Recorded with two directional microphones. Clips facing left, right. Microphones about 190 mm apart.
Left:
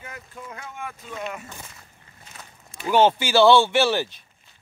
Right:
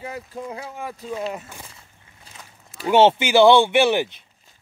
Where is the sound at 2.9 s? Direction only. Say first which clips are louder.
Right 3 dB; 25° right (ahead or behind).